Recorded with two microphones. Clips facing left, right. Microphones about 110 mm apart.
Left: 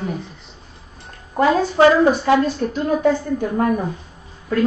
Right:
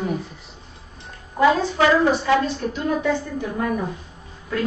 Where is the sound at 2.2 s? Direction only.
45° left (ahead or behind).